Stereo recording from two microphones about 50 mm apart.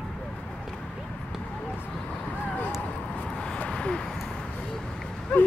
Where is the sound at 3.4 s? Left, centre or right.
Left.